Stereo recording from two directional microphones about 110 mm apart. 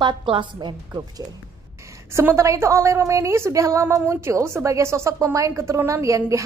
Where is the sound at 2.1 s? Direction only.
25° right (ahead or behind).